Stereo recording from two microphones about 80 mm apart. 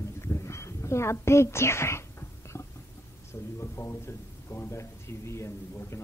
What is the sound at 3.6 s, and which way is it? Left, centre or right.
A woman's voice, left.